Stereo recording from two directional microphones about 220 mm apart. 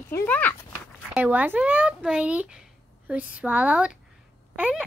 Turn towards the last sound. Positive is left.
turn(degrees=-5)  # may be behind; listen again after turning